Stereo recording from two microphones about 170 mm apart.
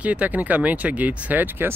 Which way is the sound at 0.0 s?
10° right (ahead or behind).